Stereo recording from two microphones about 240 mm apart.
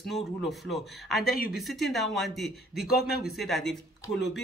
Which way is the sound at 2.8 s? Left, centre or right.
Left.